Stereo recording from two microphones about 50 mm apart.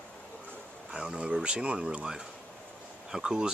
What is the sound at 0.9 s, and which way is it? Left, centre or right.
Speech, centre.